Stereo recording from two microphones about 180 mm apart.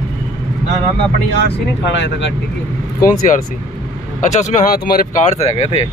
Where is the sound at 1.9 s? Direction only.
90° left.